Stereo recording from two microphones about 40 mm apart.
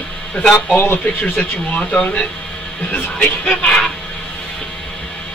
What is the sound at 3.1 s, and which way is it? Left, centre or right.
Speech, left.